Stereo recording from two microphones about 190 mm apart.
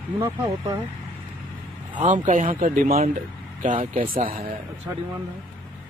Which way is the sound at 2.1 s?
40° right (ahead or behind).